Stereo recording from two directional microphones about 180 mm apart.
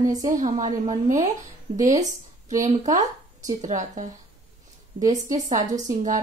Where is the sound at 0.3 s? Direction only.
45° right (ahead or behind).